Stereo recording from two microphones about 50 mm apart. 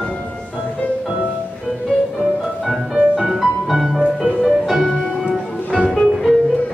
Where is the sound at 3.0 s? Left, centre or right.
Centre.